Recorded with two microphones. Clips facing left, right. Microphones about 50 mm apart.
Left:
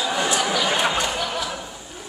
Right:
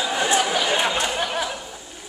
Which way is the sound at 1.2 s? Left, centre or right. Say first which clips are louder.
Right 1 dB; right.